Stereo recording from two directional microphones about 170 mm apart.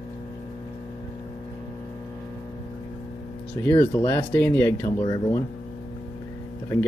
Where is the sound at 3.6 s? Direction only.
15° left (ahead or behind).